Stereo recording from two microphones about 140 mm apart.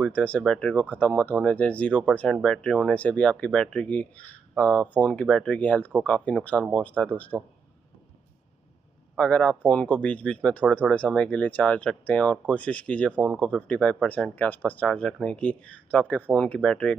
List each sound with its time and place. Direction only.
0.0 s speech: 10° left (ahead or behind)
9.1 s speech: 5° left (ahead or behind)